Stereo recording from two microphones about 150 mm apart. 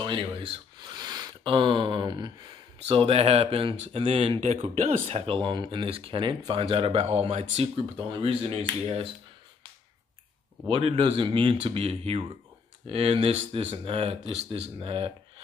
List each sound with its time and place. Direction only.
0.7 s a sound: 30° right (ahead or behind)
2.9 s speech: 40° right (ahead or behind)
10.7 s speech: 40° right (ahead or behind)